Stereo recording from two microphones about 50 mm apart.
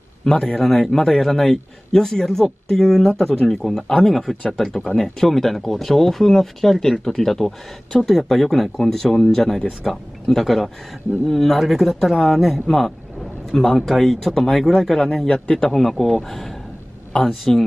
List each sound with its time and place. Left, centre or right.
0.2 s a man's voice: centre
15.7 s a man's voice: centre